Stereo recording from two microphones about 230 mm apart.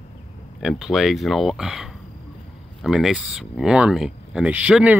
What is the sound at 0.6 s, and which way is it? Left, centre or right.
Speech, centre.